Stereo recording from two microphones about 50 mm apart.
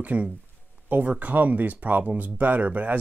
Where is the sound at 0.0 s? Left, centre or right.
Right.